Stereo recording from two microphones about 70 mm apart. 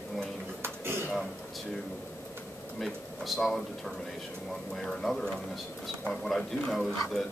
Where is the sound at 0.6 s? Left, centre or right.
Right.